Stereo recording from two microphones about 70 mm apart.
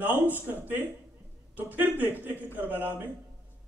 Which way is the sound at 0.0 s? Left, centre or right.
Right.